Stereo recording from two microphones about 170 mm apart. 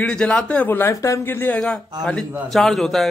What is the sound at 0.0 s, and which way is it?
A man's voice, 5° left (ahead or behind).